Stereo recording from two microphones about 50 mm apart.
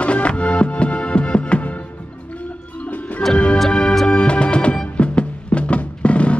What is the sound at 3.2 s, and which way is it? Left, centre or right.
Music, centre.